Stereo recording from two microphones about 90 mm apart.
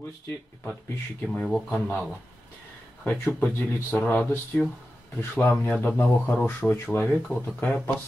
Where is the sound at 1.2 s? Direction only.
10° left (ahead or behind).